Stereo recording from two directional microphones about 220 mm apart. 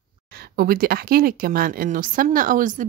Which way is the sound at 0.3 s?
45° right (ahead or behind).